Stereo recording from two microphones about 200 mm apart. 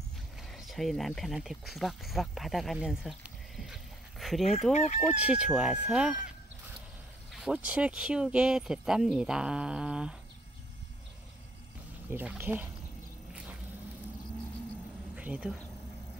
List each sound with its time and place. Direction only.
0.4 s speech: centre (ahead or behind)
4.7 s speech: 35° left (ahead or behind)
5.0 s speech: 5° right (ahead or behind)
7.3 s speech: 5° right (ahead or behind)
12.1 s speech: 10° right (ahead or behind)
13.3 s a sound: 5° right (ahead or behind)
15.1 s speech: 5° right (ahead or behind)